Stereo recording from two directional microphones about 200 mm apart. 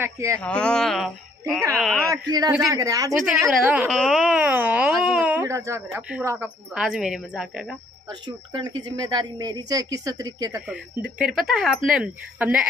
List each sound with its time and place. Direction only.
0.0 s a woman's voice: 15° right (ahead or behind)
0.4 s speech: 5° left (ahead or behind)
2.0 s a woman's voice: 20° right (ahead or behind)
3.4 s speech: 5° right (ahead or behind)
8.1 s speech: 20° right (ahead or behind)
10.7 s speech: 5° right (ahead or behind)